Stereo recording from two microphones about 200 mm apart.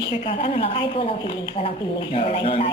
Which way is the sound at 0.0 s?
25° left (ahead or behind).